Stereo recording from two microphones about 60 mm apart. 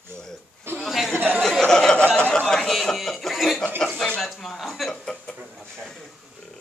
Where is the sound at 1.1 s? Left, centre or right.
Right.